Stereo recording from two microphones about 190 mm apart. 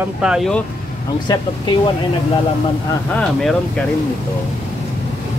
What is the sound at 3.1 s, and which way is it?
Speech, 5° left (ahead or behind).